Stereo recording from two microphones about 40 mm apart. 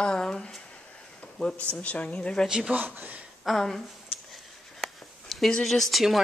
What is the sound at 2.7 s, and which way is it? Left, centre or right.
Speech, right.